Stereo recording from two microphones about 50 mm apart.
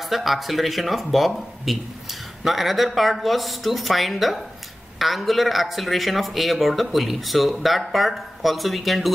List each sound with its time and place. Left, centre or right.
0.0 s a man's voice: centre